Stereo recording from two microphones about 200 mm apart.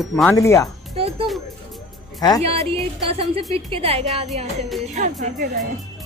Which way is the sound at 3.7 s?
30° right (ahead or behind).